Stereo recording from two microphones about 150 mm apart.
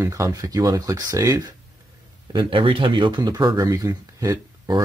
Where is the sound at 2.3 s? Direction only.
35° right (ahead or behind).